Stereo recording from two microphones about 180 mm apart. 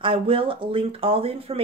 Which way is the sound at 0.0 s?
30° right (ahead or behind).